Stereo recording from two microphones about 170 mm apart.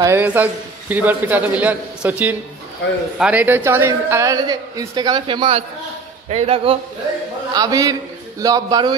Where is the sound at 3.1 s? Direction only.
5° right (ahead or behind); by 6.8 s 35° right (ahead or behind).